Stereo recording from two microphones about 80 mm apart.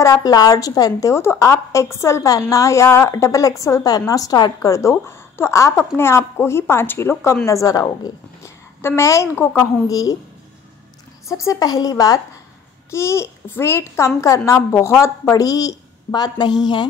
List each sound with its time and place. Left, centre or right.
0.0 s a child's voice: left
0.3 s a woman's voice: left
7.4 s a woman's voice: left
9.8 s a woman's voice: left
11.2 s a woman's voice: left
12.9 s a child's voice: left